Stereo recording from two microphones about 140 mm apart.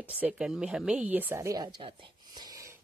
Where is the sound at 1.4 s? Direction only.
25° right (ahead or behind).